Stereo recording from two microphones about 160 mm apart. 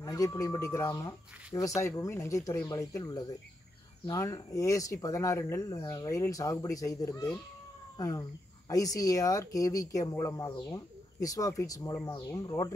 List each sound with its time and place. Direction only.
0.0 s speech: 20° left (ahead or behind)